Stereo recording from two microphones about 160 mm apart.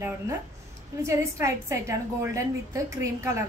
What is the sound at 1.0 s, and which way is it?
A woman's voice, 20° right (ahead or behind).